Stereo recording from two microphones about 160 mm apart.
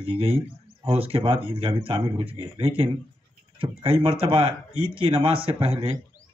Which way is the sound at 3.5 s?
35° right (ahead or behind).